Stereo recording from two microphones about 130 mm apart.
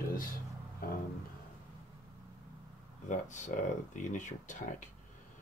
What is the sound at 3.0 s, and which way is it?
Speech, 70° left (ahead or behind).